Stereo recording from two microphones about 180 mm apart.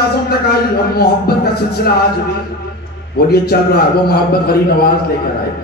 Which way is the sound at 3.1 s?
60° left (ahead or behind).